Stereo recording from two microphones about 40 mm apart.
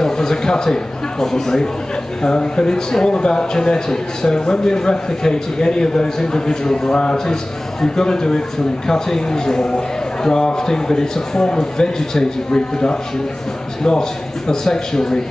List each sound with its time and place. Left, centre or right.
0.0 s a man's voice: centre
14.5 s a man's voice: centre